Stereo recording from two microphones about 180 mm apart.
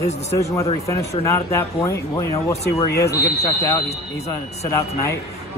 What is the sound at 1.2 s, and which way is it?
Speech, 15° left (ahead or behind).